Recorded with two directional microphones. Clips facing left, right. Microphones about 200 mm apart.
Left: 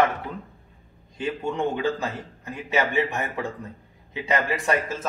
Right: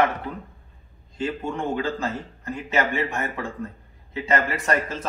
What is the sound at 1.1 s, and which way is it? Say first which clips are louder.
Speech: even; 15° left (ahead or behind).